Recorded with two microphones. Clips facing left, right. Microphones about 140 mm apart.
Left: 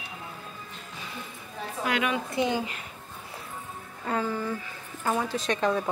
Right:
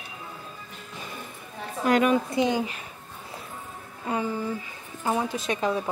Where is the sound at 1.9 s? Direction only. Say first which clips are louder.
Right 7 dB; 40° right (ahead or behind).